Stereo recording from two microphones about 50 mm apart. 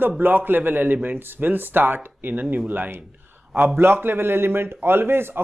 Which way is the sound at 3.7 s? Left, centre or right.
Right.